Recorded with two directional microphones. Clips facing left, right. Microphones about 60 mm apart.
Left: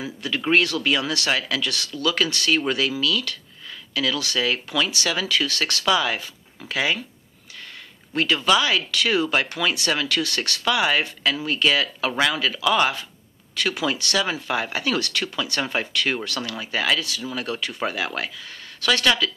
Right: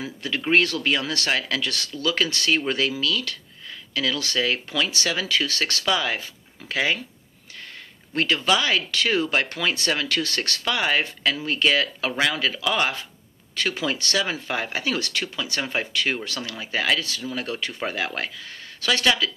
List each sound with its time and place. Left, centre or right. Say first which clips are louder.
0.5 s speech: even; right
8.5 s speech: left 3 dB; right